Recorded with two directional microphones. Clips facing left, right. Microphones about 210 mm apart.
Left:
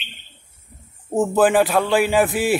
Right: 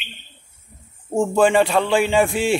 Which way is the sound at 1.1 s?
5° left (ahead or behind).